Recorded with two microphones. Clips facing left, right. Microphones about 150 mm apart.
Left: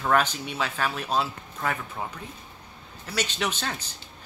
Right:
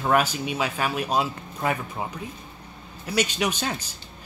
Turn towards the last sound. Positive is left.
turn(degrees=-15)  # may be behind; listen again after turning